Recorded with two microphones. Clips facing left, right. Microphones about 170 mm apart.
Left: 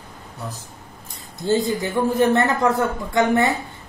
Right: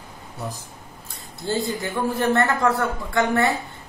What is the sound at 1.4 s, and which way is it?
A man's voice, 20° left (ahead or behind).